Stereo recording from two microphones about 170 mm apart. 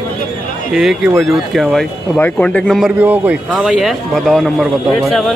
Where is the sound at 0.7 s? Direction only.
5° right (ahead or behind).